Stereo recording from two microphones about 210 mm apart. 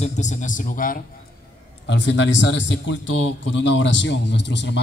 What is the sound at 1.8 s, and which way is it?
A man's voice, 60° left (ahead or behind).